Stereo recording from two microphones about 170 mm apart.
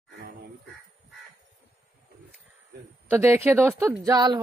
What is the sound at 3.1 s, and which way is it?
Speech, 15° right (ahead or behind).